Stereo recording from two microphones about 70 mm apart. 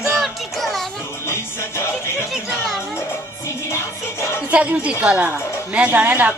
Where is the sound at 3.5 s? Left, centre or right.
Left.